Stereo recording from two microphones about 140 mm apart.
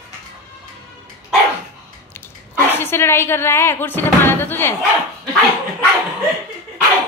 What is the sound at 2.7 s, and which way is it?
Speech, 15° left (ahead or behind).